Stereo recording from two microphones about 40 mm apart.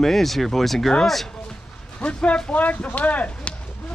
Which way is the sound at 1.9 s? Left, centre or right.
Left.